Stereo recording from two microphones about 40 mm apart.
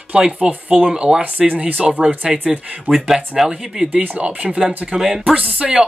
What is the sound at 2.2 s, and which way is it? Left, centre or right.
Speech, centre.